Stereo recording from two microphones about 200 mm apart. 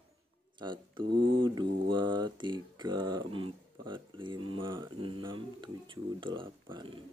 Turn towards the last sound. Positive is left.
turn(degrees=-25)  # may be behind; listen again after turning